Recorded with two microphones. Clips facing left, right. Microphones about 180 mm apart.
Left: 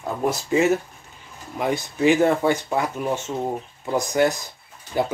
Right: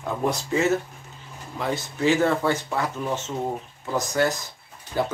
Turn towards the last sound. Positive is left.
turn(degrees=15)  # may be behind; listen again after turning